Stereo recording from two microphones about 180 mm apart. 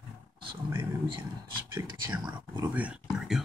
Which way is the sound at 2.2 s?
20° right (ahead or behind).